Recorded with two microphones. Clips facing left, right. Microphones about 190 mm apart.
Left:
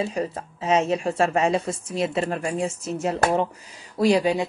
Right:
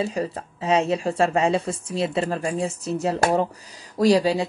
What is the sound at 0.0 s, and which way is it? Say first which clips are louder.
Speech: right 1 dB; 35° right (ahead or behind).